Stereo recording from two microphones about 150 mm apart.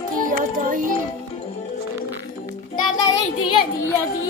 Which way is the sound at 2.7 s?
30° left (ahead or behind).